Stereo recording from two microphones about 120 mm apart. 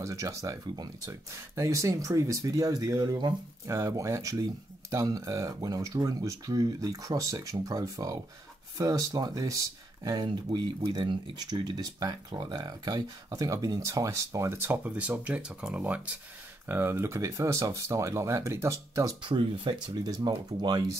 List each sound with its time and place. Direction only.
0.0 s speech: 25° right (ahead or behind)
10.2 s speech: 40° right (ahead or behind); by 19.1 s 25° right (ahead or behind)
19.2 s speech: 45° right (ahead or behind)